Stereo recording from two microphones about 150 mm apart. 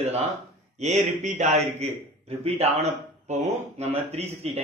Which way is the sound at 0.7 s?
50° right (ahead or behind).